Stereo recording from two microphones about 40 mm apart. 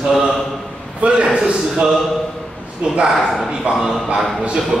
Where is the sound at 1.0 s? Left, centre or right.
Right.